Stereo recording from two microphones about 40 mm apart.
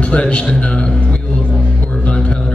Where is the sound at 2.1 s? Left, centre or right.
Left.